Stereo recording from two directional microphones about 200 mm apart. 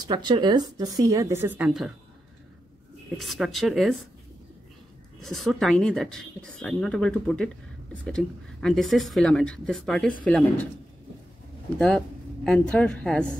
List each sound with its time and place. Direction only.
0.1 s a woman's voice: 20° right (ahead or behind); by 1.9 s 5° right (ahead or behind)
3.2 s speech: centre (ahead or behind)
5.2 s speech: centre (ahead or behind)
12.4 s speech: 5° left (ahead or behind)